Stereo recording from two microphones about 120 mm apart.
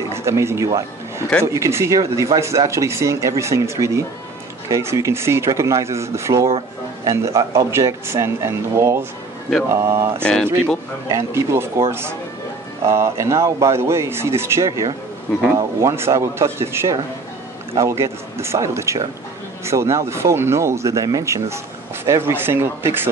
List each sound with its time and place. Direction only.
0.1 s speech: 25° right (ahead or behind)
10.2 s speech: 5° left (ahead or behind)
11.1 s speech: 25° right (ahead or behind)